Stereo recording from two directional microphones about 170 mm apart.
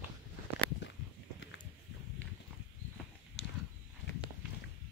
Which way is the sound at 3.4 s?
90° left.